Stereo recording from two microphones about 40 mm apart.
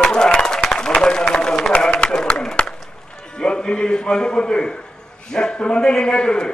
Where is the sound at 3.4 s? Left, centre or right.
Left.